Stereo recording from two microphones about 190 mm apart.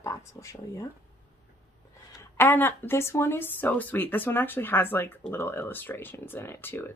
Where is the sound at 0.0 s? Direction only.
15° left (ahead or behind).